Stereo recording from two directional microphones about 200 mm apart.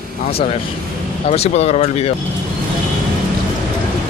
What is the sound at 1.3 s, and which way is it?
Speech, 30° left (ahead or behind).